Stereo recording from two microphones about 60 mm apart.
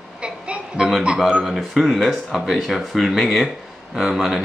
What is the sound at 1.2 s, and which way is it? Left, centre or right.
A man's voice, centre.